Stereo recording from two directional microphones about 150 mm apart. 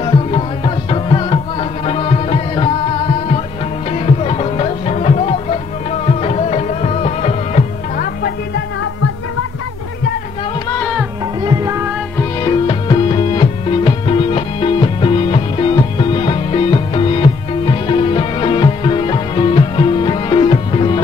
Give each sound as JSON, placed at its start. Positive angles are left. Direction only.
{"t": 0.0, "sound": "music", "side_deg": 35}
{"t": 3.9, "sound": "music", "side_deg": 40}
{"t": 11.4, "sound": "music", "side_deg": -20}
{"t": 12.2, "sound": "music", "side_deg": 25}